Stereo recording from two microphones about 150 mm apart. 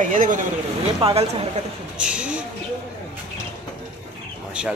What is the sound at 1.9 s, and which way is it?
Speech, 5° right (ahead or behind).